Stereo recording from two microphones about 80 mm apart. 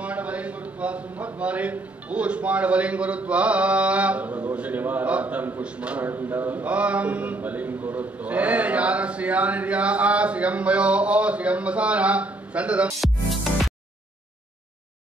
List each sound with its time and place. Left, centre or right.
0.0 s a man's voice: centre
13.0 s music: centre